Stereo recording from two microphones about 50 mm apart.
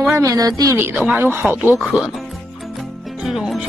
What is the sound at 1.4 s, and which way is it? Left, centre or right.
Speech, centre.